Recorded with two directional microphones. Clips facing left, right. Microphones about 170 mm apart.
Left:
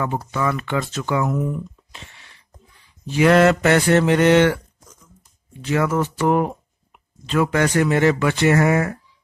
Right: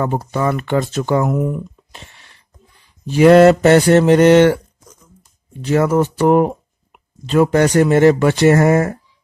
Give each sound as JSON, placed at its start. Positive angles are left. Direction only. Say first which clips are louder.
{"t": 0.0, "sound": "speech", "louder": "right 4 dB", "side_deg": -40}
{"t": 3.1, "sound": "speech", "louder": "right 6 dB", "side_deg": -40}
{"t": 5.6, "sound": "speech", "louder": "right 6 dB", "side_deg": -35}